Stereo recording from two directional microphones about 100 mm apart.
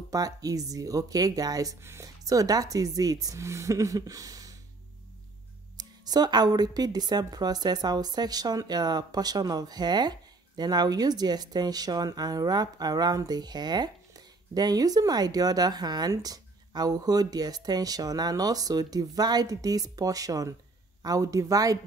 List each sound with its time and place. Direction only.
0.1 s speech: 35° right (ahead or behind)
5.8 s speech: 40° right (ahead or behind)